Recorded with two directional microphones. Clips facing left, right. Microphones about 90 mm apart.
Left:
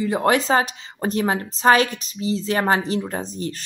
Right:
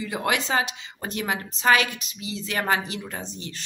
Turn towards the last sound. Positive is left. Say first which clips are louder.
# left 8 dB
turn(degrees=40)  # may be behind; listen again after turning